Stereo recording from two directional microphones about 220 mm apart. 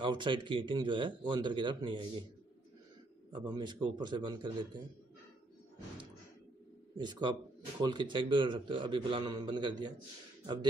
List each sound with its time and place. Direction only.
0.0 s a man's voice: 20° right (ahead or behind)
3.3 s a man's voice: 20° right (ahead or behind)
7.0 s a man's voice: 20° right (ahead or behind)